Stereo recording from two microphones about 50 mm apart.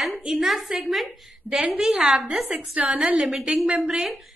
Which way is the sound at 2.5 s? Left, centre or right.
Right.